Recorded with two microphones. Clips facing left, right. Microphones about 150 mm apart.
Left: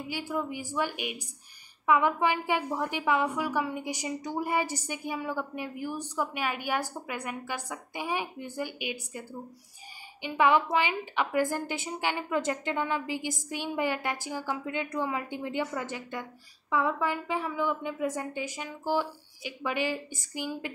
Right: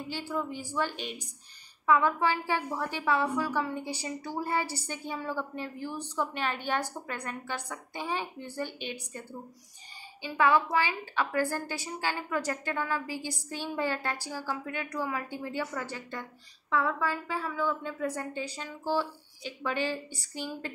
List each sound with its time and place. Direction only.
0.1 s a woman's voice: 10° left (ahead or behind)
10.2 s a woman's voice: 20° left (ahead or behind)